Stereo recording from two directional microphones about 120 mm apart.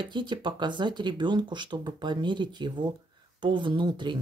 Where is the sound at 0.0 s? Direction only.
40° right (ahead or behind).